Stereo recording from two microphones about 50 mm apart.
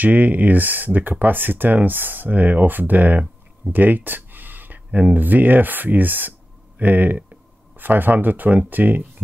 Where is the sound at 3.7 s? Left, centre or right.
Right.